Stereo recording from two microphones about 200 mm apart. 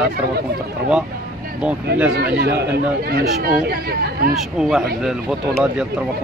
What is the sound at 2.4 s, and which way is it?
Speech, 55° right (ahead or behind).